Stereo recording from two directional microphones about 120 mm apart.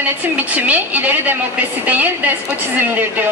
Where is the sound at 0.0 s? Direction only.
15° right (ahead or behind).